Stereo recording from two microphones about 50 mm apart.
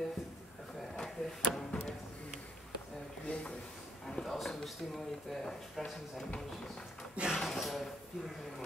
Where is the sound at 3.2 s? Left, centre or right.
Left.